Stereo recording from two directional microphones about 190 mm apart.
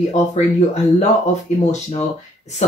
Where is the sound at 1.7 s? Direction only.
35° left (ahead or behind).